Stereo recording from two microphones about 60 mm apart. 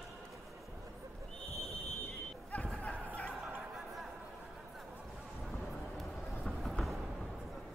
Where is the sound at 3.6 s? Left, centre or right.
Centre.